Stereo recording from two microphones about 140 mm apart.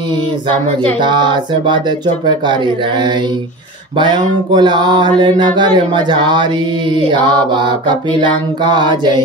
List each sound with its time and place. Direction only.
1.0 s mantra: 35° right (ahead or behind)